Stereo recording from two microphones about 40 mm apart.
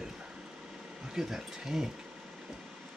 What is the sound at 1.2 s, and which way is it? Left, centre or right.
Speech, centre.